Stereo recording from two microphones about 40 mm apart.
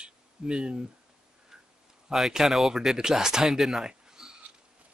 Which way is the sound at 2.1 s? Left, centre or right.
Centre.